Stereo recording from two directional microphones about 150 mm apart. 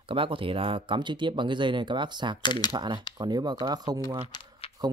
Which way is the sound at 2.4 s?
30° left (ahead or behind).